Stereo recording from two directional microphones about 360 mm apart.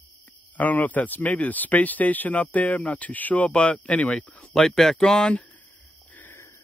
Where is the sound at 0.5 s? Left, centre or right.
Centre.